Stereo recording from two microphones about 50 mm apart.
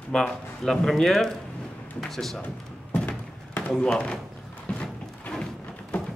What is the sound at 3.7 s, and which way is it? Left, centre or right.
Speech, centre.